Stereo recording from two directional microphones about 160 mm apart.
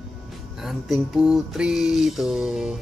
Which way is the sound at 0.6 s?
5° right (ahead or behind).